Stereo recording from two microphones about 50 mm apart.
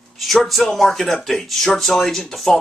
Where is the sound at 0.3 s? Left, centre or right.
Centre.